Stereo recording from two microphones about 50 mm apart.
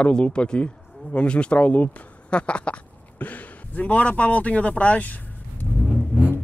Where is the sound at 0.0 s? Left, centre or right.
Left.